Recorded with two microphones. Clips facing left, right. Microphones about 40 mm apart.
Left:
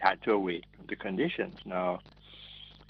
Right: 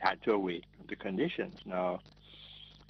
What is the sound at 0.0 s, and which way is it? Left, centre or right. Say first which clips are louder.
Speech: left 3 dB; centre.